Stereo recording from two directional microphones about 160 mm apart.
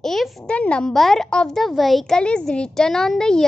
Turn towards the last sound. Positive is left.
turn(degrees=5)  # may be behind; listen again after turning